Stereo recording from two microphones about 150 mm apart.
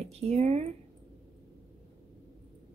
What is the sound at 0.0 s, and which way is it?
Speech, 45° right (ahead or behind).